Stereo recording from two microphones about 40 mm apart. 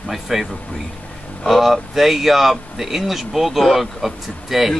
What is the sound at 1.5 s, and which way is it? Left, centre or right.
Speech, centre.